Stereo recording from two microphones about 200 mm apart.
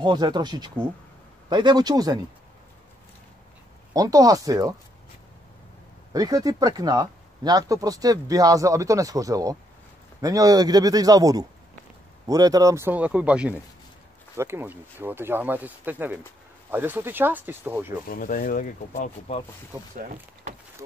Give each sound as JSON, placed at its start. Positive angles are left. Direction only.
{"t": 0.0, "sound": "speech", "side_deg": -20}
{"t": 3.9, "sound": "speech", "side_deg": -20}
{"t": 6.1, "sound": "speech", "side_deg": -20}
{"t": 18.0, "sound": "speech", "side_deg": 45}